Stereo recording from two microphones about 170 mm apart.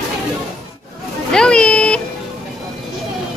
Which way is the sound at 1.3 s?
5° left (ahead or behind).